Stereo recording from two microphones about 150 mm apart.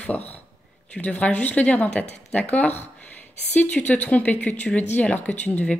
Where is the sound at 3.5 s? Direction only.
10° left (ahead or behind).